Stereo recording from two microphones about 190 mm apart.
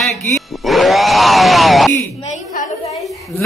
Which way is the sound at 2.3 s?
40° left (ahead or behind).